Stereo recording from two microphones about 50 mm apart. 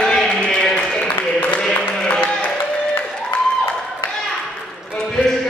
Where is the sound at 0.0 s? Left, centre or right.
Centre.